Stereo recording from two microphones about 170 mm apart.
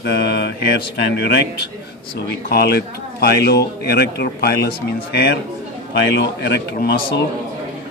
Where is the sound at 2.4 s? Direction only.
70° left (ahead or behind).